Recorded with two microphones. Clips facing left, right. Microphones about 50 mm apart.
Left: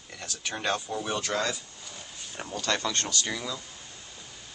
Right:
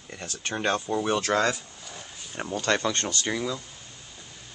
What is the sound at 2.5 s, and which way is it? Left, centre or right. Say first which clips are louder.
Speech: right 4 dB; right.